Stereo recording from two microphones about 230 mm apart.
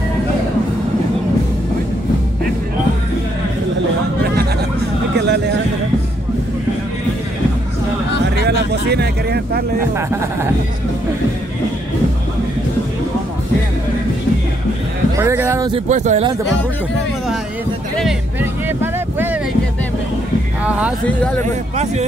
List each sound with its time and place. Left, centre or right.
8.4 s vehicle: right
15.1 s speech: centre
15.7 s speech: right
17.9 s music: centre
20.6 s speech: centre